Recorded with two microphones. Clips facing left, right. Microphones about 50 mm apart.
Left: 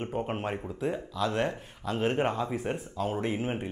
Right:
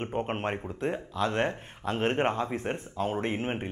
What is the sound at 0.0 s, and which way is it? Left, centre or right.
Speech, right.